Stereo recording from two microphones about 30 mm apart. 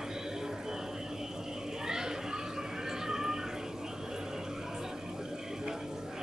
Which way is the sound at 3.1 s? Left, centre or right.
Centre.